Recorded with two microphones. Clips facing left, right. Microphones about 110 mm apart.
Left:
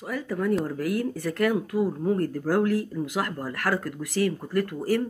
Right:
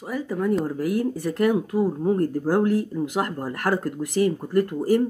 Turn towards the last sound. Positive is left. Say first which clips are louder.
# right 5 dB
turn(degrees=-20)  # may be behind; listen again after turning